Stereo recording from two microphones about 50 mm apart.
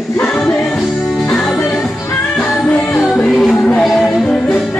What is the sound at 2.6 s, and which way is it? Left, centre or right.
Music, left.